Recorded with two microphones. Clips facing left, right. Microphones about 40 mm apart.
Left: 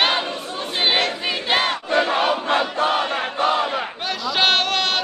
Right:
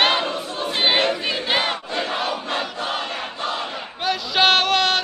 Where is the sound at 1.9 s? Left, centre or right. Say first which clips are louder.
Left 6 dB; left.